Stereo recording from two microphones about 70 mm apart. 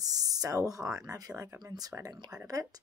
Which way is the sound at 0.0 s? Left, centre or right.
Right.